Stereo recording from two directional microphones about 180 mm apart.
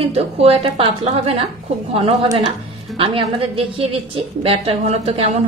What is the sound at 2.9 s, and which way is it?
A woman's voice, 30° right (ahead or behind).